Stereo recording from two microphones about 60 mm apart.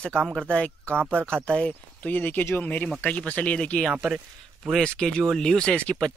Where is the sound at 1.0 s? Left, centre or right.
Right.